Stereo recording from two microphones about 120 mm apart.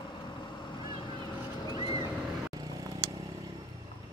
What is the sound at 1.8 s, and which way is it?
Boat, 45° left (ahead or behind).